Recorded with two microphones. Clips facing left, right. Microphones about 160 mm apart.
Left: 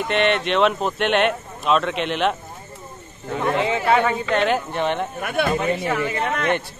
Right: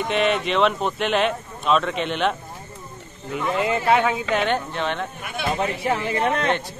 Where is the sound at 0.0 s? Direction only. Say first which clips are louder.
Left 1 dB; centre (ahead or behind).